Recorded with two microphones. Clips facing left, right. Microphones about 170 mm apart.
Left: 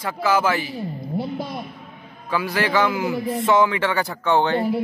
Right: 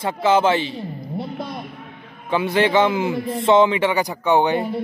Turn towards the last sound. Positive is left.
turn(degrees=-15)  # may be behind; listen again after turning